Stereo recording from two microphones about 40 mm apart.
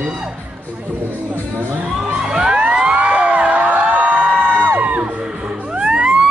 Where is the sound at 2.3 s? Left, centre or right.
Centre.